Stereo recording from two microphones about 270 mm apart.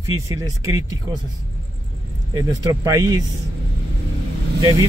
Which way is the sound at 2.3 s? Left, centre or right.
Centre.